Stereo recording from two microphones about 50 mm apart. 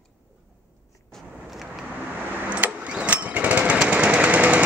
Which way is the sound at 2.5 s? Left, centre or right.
Right.